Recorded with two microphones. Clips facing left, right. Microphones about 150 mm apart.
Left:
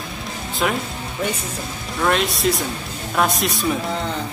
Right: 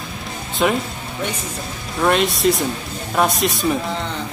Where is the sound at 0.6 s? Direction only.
Centre (ahead or behind).